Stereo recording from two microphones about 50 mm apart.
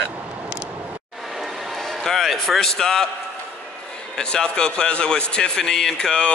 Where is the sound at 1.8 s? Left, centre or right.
Centre.